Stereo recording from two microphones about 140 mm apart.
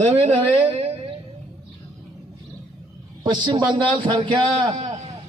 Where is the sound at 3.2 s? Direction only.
35° right (ahead or behind).